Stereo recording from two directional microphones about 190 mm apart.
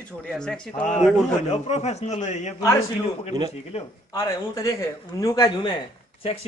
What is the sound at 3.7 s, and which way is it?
Speech, 35° left (ahead or behind).